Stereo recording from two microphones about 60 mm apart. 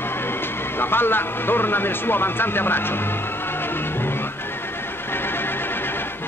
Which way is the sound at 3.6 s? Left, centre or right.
Left.